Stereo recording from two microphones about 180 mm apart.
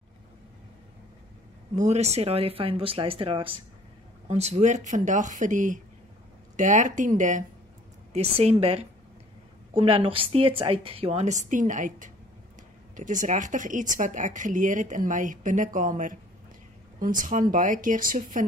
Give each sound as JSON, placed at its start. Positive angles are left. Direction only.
{"t": 1.8, "sound": "a woman's voice", "side_deg": -35}